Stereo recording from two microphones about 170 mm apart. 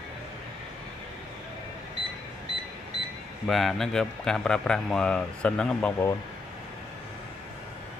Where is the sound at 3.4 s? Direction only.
Centre (ahead or behind).